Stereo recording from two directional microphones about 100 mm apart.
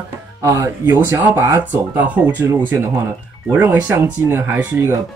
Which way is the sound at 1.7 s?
15° right (ahead or behind).